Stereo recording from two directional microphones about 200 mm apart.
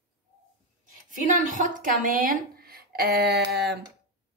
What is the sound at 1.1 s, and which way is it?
A woman's voice, 40° right (ahead or behind).